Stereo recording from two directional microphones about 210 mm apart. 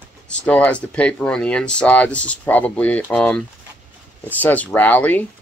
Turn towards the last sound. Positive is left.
turn(degrees=10)  # may be behind; listen again after turning